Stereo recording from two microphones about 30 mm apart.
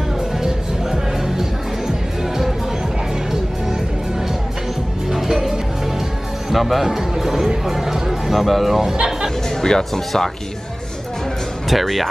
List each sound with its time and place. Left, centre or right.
1.2 s music: centre
5.1 s music: centre
6.5 s speech: centre
9.6 s speech: centre
11.7 s speech: centre